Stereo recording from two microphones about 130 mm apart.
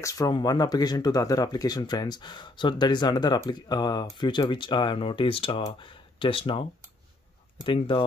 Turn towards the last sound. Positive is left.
turn(degrees=40)  # may be behind; listen again after turning